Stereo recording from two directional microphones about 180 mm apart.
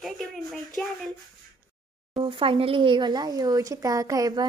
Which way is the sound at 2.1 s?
30° right (ahead or behind).